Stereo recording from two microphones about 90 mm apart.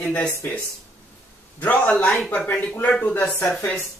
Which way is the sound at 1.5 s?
15° left (ahead or behind).